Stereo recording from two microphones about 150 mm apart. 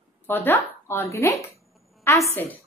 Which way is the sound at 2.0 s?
20° left (ahead or behind).